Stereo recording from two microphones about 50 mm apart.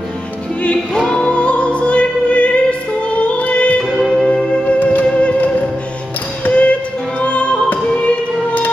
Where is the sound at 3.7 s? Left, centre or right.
Centre.